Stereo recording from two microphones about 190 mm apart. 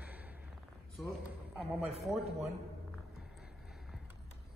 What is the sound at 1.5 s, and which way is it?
Speech, centre (ahead or behind).